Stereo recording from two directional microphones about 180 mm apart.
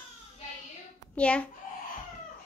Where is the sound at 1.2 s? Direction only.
5° left (ahead or behind).